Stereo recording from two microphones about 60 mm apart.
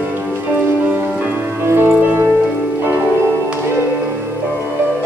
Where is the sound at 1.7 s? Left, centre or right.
Right.